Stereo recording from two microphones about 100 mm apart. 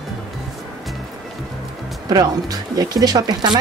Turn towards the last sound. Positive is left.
turn(degrees=-45)  # may be behind; listen again after turning